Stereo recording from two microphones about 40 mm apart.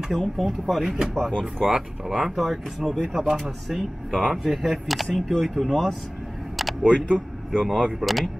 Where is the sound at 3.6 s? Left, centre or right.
Centre.